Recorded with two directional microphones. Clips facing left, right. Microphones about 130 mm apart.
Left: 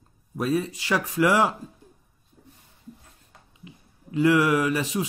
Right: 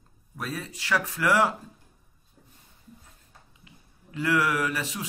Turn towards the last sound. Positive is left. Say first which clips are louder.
# left 5 dB
turn(degrees=20)  # may be behind; listen again after turning